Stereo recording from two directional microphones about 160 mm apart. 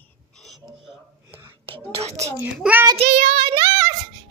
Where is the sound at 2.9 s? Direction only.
40° right (ahead or behind).